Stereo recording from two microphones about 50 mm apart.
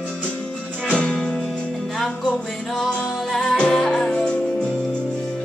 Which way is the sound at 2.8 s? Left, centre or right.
Centre.